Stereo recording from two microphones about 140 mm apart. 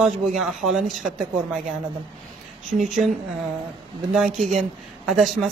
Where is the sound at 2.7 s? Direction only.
70° right (ahead or behind).